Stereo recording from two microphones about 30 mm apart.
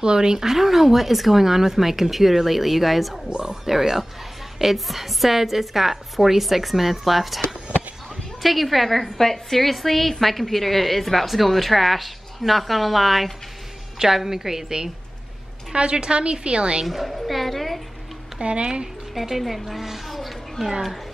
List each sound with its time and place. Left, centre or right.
0.0 s speech: right
0.4 s a woman's voice: centre
13.9 s speech: centre
15.7 s a woman's voice: right
16.8 s a woman's voice: centre
18.4 s a woman's voice: right
19.1 s a woman's voice: centre